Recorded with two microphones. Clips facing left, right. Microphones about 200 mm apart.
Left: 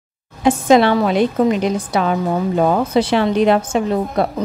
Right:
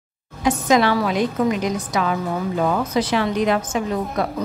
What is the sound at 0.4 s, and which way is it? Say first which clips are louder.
A woman's voice: left 5 dB; 30° left (ahead or behind).